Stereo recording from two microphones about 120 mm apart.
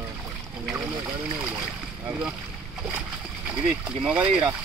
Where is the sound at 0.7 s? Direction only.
Centre (ahead or behind).